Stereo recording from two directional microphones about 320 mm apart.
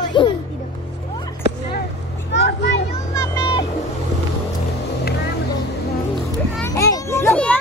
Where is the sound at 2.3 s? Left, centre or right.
Left.